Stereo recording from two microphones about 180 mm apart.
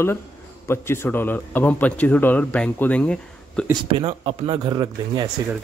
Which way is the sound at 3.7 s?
30° right (ahead or behind).